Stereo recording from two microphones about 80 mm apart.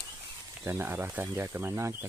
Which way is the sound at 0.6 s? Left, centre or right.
Right.